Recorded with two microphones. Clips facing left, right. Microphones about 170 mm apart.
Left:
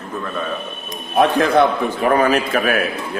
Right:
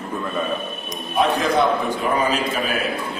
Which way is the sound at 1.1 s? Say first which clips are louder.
Left 4 dB; 55° left (ahead or behind).